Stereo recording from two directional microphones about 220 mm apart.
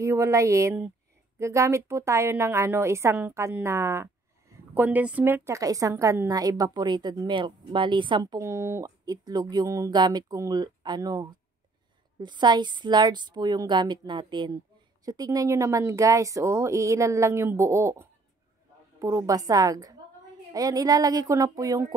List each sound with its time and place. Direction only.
0.0 s a woman's voice: 15° right (ahead or behind)